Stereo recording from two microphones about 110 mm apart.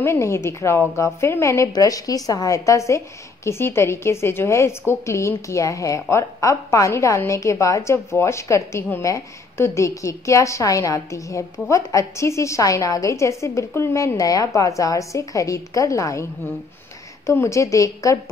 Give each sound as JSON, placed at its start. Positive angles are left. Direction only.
{"t": 0.0, "sound": "a woman's voice", "side_deg": 25}
{"t": 17.3, "sound": "a woman's voice", "side_deg": 25}